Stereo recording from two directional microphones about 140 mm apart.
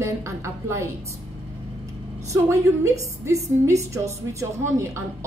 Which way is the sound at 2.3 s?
20° right (ahead or behind).